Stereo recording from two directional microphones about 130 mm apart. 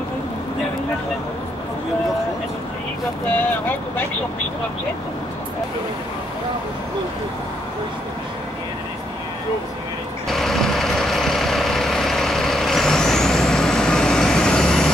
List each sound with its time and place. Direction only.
3.3 s speech: 15° left (ahead or behind)
10.2 s vehicle: centre (ahead or behind)